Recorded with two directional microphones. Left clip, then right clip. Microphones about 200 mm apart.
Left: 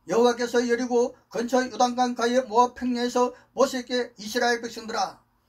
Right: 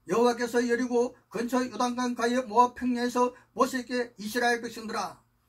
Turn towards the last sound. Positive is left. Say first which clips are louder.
# left 5 dB
turn(degrees=-15)  # may be behind; listen again after turning